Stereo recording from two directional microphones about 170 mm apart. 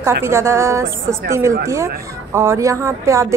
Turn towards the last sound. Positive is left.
turn(degrees=-15)  # may be behind; listen again after turning